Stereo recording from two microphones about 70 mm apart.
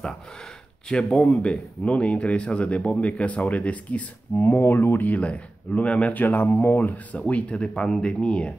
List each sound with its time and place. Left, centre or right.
0.8 s speech: centre